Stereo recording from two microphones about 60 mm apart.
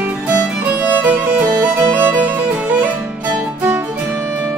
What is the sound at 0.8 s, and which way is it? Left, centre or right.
Music, right.